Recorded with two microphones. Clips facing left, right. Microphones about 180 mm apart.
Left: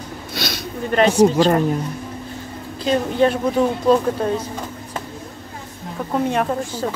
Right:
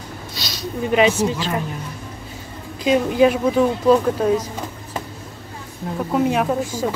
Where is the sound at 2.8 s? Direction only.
10° right (ahead or behind).